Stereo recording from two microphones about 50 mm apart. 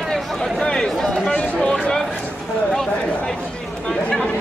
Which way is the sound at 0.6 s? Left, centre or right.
Centre.